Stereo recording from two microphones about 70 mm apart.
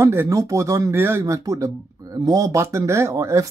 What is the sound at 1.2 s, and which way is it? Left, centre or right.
A man's voice, right.